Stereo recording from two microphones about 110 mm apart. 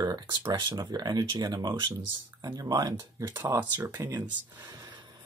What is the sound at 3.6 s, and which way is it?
Speech, 20° right (ahead or behind).